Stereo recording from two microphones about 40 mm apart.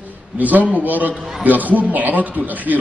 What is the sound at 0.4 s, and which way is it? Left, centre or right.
A man's voice, right.